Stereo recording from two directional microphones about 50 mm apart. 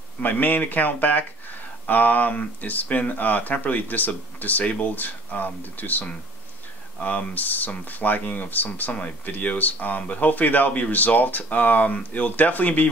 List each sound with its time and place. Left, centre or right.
0.2 s speech: left